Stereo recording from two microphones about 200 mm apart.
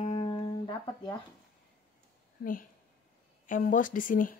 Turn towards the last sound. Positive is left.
turn(degrees=45)  # may be behind; listen again after turning